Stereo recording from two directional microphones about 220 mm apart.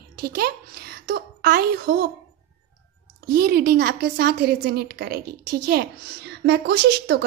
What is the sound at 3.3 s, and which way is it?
A woman's voice, 45° right (ahead or behind).